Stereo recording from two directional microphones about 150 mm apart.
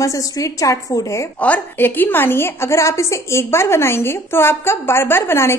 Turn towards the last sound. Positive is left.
turn(degrees=15)  # may be behind; listen again after turning